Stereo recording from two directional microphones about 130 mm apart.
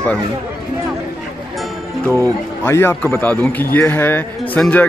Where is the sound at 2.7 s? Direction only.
20° left (ahead or behind).